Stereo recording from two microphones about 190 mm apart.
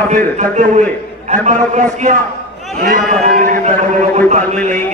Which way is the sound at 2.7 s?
50° right (ahead or behind).